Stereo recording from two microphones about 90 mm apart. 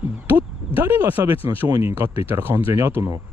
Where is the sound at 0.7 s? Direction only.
20° right (ahead or behind).